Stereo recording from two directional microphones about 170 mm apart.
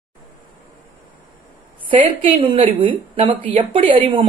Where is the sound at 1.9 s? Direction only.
30° right (ahead or behind).